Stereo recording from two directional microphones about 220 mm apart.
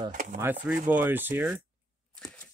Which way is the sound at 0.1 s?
35° right (ahead or behind).